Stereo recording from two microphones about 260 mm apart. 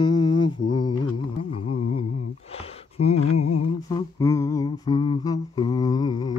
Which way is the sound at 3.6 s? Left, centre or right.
Centre.